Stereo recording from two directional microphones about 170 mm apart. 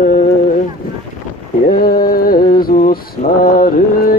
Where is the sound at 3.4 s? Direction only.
55° left (ahead or behind).